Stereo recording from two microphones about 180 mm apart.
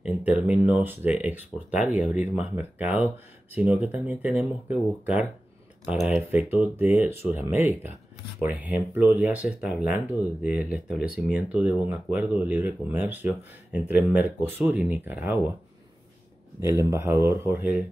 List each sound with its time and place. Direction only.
0.0 s speech: 10° right (ahead or behind)
6.5 s speech: 10° right (ahead or behind)
16.9 s speech: 15° right (ahead or behind)